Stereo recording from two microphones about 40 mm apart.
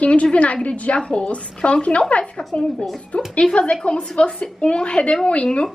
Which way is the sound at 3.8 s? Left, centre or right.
Left.